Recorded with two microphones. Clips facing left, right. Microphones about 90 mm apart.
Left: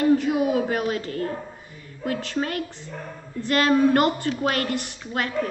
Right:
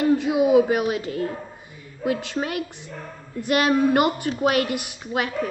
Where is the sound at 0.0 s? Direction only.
15° right (ahead or behind).